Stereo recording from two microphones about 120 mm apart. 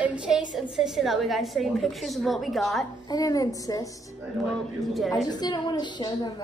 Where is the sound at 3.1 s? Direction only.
30° left (ahead or behind).